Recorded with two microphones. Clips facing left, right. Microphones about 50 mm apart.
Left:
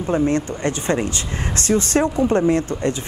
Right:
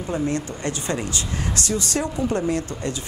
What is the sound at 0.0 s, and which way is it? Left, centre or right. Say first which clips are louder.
A woman's voice: left 6 dB; left.